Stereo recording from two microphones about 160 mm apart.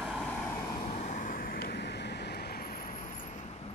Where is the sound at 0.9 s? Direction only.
50° left (ahead or behind).